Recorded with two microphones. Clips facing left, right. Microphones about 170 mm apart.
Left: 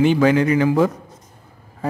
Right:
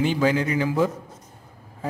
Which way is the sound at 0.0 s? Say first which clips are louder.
Left 6 dB; 70° left (ahead or behind).